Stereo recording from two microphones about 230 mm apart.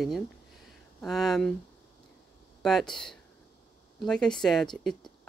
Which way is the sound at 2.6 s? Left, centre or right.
Centre.